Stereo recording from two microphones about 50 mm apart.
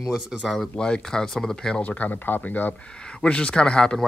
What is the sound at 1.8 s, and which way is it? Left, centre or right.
Speech, left.